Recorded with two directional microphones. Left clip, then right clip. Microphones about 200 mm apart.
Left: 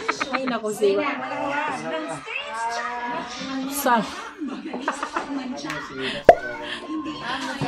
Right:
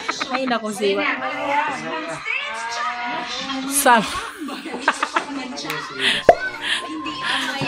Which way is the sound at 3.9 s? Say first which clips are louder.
Right 6 dB; 15° right (ahead or behind).